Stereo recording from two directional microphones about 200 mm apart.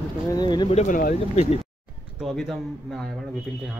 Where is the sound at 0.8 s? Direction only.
40° left (ahead or behind).